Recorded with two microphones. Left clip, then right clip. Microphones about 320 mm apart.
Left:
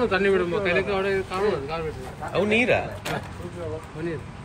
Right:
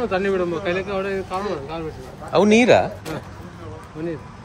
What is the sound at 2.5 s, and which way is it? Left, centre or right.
Speech, right.